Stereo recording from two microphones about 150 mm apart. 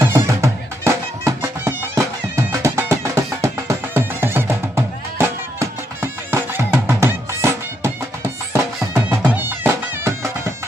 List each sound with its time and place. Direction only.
0.0 s music: 20° right (ahead or behind)